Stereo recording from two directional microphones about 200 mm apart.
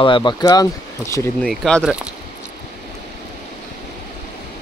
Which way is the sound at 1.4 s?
Centre (ahead or behind).